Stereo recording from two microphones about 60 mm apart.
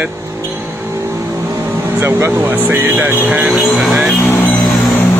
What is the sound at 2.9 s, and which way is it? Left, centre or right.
Speech, right.